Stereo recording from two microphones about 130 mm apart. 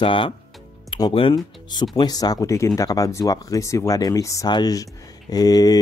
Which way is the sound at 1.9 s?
30° left (ahead or behind).